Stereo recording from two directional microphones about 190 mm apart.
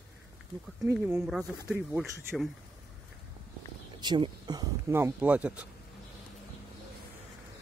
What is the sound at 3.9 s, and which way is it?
Speech, 25° right (ahead or behind).